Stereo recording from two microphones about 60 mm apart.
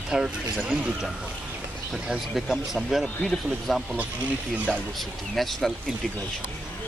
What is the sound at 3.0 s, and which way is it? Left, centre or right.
Speech, centre.